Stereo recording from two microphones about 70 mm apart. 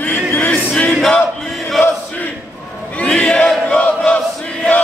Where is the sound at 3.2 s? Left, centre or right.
Centre.